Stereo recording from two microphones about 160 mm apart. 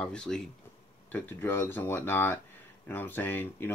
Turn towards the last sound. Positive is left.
turn(degrees=15)  # may be behind; listen again after turning